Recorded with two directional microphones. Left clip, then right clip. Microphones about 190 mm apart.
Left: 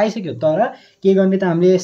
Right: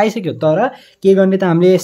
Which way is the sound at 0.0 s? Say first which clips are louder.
Right 3 dB; 35° right (ahead or behind).